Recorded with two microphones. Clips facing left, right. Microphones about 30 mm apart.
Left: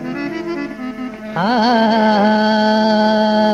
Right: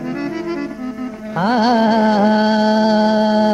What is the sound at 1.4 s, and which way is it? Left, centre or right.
Carnatic music, left.